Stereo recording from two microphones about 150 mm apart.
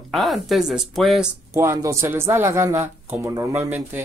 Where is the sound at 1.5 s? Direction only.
20° right (ahead or behind).